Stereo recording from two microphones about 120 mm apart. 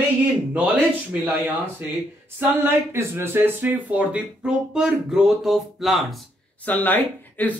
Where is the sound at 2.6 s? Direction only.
20° right (ahead or behind); by 6.0 s centre (ahead or behind).